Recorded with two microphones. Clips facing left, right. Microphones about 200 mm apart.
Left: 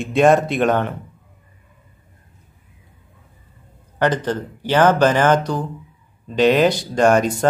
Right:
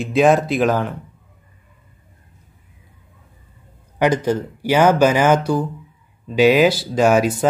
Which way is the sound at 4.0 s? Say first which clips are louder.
Right 2 dB; 10° right (ahead or behind).